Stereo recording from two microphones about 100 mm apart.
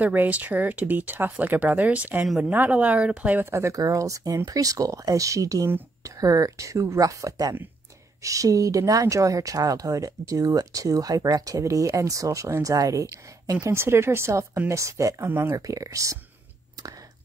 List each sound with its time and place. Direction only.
0.0 s speech: 15° right (ahead or behind)
3.5 s speech: 35° right (ahead or behind)